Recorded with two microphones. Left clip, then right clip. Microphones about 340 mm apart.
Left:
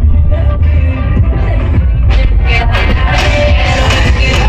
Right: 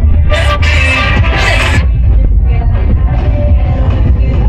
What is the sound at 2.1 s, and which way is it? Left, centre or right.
Music, left.